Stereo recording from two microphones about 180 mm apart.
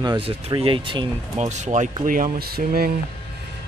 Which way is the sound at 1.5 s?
40° right (ahead or behind).